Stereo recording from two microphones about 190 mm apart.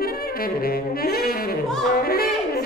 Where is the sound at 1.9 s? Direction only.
50° left (ahead or behind).